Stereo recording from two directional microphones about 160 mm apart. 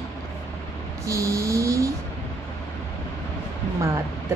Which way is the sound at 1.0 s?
20° right (ahead or behind).